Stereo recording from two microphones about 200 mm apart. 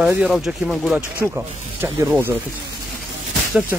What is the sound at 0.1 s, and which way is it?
Speech, 5° right (ahead or behind).